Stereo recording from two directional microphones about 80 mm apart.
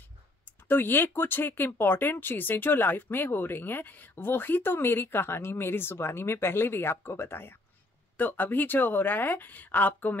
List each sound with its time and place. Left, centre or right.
0.5 s speech: left